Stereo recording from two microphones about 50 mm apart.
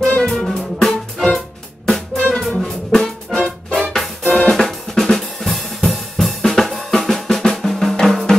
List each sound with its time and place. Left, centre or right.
0.0 s music: left
0.3 s music: centre
2.1 s music: left
2.5 s music: centre
4.3 s drum: centre